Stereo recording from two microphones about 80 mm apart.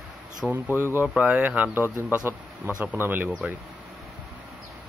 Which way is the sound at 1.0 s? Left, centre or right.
Centre.